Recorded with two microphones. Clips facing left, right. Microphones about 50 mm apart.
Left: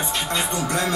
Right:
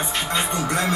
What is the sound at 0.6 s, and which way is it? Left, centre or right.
Speech, right.